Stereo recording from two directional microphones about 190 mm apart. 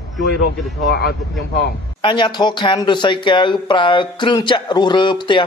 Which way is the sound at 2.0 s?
25° left (ahead or behind).